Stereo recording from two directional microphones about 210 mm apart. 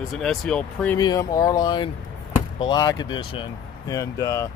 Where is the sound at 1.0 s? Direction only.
15° left (ahead or behind).